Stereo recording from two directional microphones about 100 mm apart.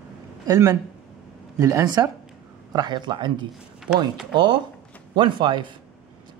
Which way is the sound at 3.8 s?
5° right (ahead or behind).